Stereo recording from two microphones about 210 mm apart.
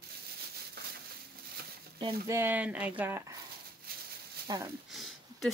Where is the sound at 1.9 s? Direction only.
20° right (ahead or behind).